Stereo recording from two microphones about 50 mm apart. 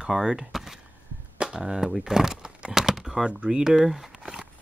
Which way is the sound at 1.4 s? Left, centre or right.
Centre.